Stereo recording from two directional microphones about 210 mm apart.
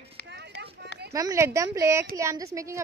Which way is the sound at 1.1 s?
15° right (ahead or behind).